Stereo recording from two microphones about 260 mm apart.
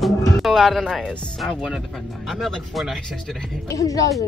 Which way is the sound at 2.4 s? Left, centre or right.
Centre.